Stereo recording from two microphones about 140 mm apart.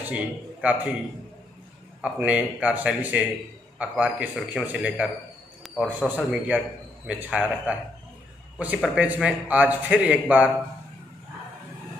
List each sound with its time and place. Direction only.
0.0 s a man's voice: 10° right (ahead or behind)
2.0 s a man's voice: 10° right (ahead or behind)
6.0 s a man's voice: 10° right (ahead or behind)